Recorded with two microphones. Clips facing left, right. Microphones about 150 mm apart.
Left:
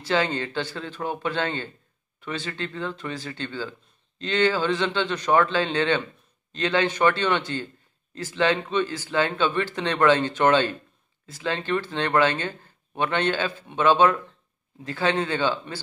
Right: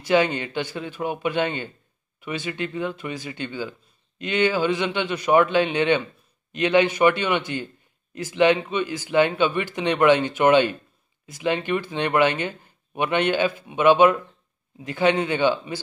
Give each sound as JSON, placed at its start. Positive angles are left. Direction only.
{"t": 0.0, "sound": "speech", "side_deg": -15}